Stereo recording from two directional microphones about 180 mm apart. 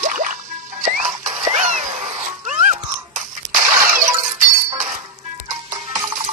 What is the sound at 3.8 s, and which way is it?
Shatter, 45° right (ahead or behind).